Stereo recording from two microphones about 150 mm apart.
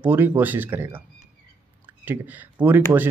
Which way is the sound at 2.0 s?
10° right (ahead or behind).